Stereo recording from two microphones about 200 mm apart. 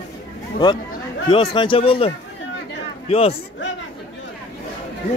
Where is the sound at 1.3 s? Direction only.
25° left (ahead or behind).